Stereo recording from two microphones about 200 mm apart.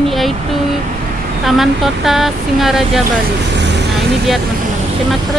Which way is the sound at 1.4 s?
Centre (ahead or behind).